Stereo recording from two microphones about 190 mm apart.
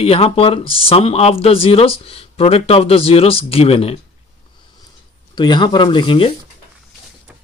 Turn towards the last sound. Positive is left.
turn(degrees=25)  # may be behind; listen again after turning